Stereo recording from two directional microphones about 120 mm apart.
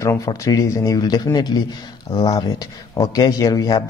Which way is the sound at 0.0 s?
25° left (ahead or behind).